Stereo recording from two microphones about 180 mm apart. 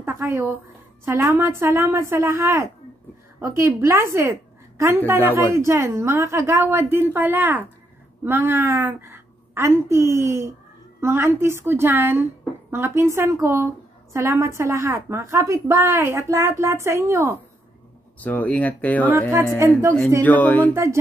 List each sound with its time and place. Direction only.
0.0 s a woman's voice: 15° right (ahead or behind)
18.2 s speech: 10° left (ahead or behind)
20.2 s speech: 10° left (ahead or behind)
20.7 s a woman's voice: 15° right (ahead or behind)